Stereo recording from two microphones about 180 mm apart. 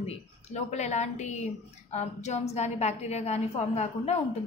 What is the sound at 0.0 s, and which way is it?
A woman's voice, 35° left (ahead or behind).